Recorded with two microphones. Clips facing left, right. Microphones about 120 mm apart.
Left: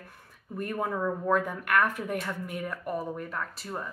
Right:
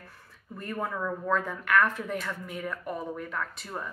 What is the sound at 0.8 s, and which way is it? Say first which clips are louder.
Speech: left 2 dB; 25° left (ahead or behind).